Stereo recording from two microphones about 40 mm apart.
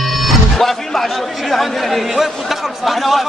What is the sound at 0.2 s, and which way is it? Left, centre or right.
Music, centre.